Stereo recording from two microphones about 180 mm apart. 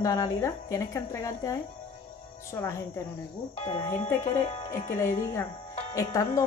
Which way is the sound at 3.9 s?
15° left (ahead or behind).